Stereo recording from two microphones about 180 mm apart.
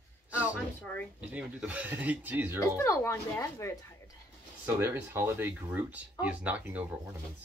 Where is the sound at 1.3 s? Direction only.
5° right (ahead or behind).